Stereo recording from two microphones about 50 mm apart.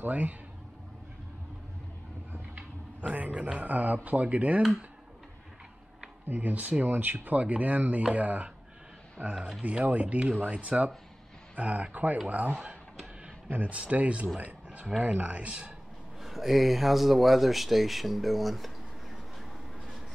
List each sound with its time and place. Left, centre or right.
0.0 s speech: right
2.5 s a sound: right
3.4 s speech: right
6.2 s speech: right
16.2 s speech: centre